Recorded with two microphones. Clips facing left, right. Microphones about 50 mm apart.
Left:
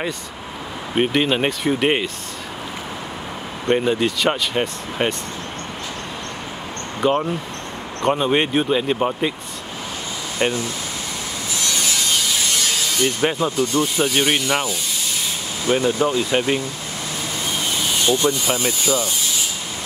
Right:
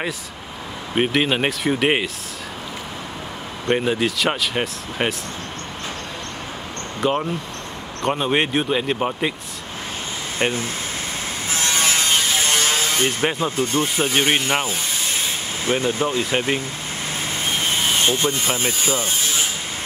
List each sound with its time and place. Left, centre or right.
0.9 s speech: centre
3.7 s speech: centre
7.0 s speech: centre
10.4 s speech: centre
11.5 s a sound: right
13.4 s speech: right
17.5 s vehicle: right
18.5 s speech: right